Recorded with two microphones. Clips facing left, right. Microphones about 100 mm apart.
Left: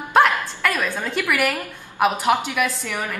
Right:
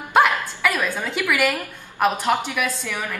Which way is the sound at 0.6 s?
10° right (ahead or behind).